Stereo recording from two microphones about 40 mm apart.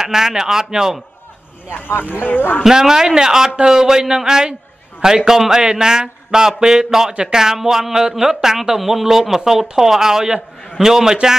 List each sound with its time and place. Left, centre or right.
0.0 s a man's voice: centre
1.7 s speech: left
2.6 s a man's voice: centre